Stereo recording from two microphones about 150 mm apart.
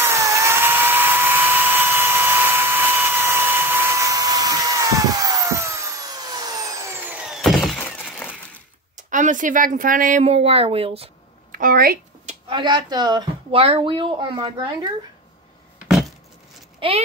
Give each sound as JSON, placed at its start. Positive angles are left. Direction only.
{"t": 0.0, "sound": "dental drill", "side_deg": -20}
{"t": 7.1, "sound": "a sound", "side_deg": -5}
{"t": 8.0, "sound": "glass", "side_deg": 10}
{"t": 8.9, "sound": "a woman's voice", "side_deg": -55}
{"t": 10.2, "sound": "a woman's voice", "side_deg": -40}
{"t": 11.5, "sound": "a woman's voice", "side_deg": -70}
{"t": 12.4, "sound": "a woman's voice", "side_deg": -30}
{"t": 16.8, "sound": "a woman's voice", "side_deg": -35}